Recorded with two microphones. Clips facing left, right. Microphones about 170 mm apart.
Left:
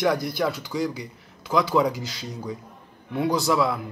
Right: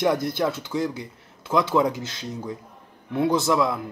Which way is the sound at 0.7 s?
Centre (ahead or behind).